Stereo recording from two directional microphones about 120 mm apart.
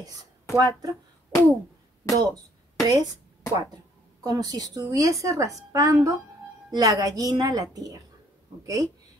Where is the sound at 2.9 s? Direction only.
30° right (ahead or behind).